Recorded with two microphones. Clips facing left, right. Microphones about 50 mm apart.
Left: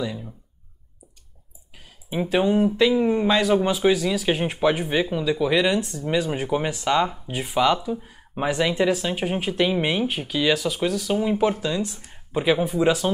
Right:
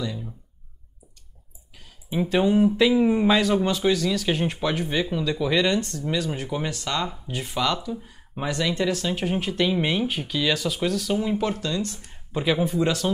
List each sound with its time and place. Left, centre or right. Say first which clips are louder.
0.0 s speech: left 2 dB; centre
2.0 s speech: even; centre
12.8 s speech: left 4 dB; centre